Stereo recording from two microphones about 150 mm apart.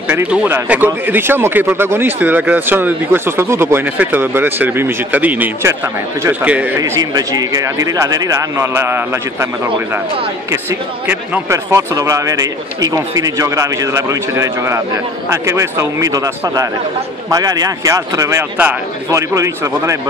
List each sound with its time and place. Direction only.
0.1 s speech: 10° right (ahead or behind)
6.8 s speech: 25° right (ahead or behind)
10.5 s speech: 15° right (ahead or behind)